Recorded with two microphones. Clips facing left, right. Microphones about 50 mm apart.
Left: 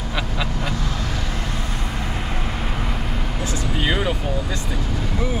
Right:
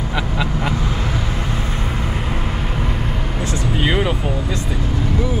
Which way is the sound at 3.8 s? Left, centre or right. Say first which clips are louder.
Right 3 dB; centre.